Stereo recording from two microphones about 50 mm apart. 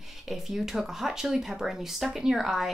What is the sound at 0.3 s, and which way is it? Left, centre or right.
A woman's voice, centre.